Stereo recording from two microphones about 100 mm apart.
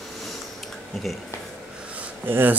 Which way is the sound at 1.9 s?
20° right (ahead or behind).